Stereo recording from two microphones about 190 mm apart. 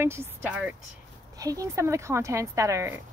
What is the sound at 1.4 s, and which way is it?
Speech, 20° right (ahead or behind).